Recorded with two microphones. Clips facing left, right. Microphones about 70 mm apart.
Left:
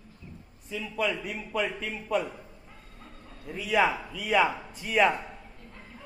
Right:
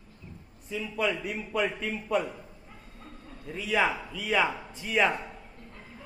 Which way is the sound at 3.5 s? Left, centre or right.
Centre.